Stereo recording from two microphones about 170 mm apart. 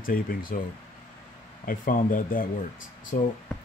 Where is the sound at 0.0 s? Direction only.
55° left (ahead or behind).